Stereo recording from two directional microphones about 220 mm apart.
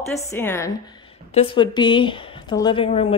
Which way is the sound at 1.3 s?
25° left (ahead or behind).